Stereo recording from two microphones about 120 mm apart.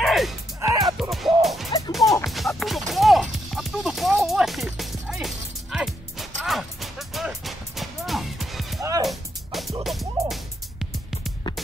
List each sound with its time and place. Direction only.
0.0 s music: centre (ahead or behind)
0.6 s music: 25° right (ahead or behind)
1.1 s music: centre (ahead or behind)
2.9 s a sound: centre (ahead or behind)
9.0 s music: centre (ahead or behind)